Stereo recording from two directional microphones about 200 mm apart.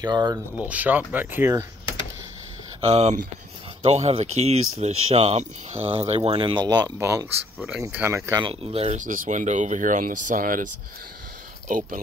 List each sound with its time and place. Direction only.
0.0 s speech: 20° right (ahead or behind)
0.6 s speech: 10° right (ahead or behind)
2.8 s speech: 30° right (ahead or behind)